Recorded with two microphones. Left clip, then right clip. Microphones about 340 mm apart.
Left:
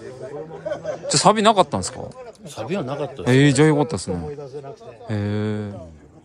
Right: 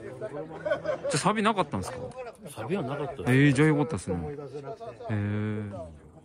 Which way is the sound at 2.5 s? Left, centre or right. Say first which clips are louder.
Left 6 dB; left.